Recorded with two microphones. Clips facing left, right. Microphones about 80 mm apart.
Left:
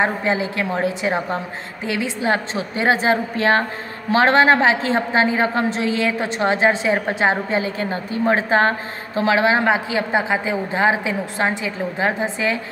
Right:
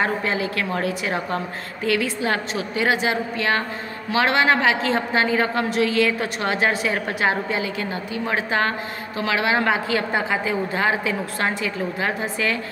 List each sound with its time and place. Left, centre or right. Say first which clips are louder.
0.0 s a woman's voice: left 3 dB; left